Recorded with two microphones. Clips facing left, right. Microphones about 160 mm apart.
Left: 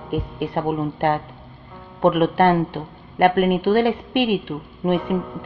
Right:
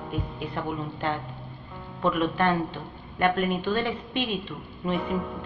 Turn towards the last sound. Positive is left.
turn(degrees=0)  # may be behind; listen again after turning